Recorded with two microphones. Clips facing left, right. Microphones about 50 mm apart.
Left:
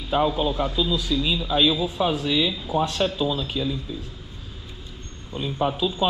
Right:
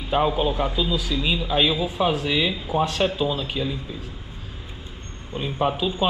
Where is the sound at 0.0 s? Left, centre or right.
Right.